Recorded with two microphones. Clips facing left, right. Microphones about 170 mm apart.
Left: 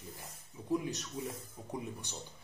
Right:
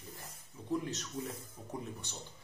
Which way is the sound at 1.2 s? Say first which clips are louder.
Even; 10° left (ahead or behind).